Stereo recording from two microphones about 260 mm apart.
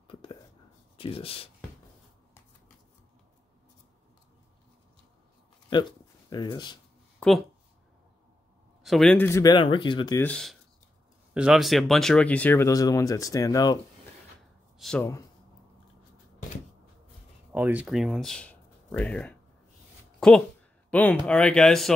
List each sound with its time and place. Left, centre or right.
0.1 s whispering: centre
0.9 s speech: left
6.3 s speech: centre
7.2 s a sound: centre
8.8 s speech: centre
14.8 s speech: centre
17.5 s speech: centre